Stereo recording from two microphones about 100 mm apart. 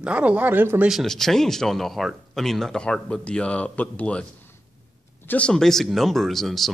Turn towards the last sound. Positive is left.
turn(degrees=0)  # may be behind; listen again after turning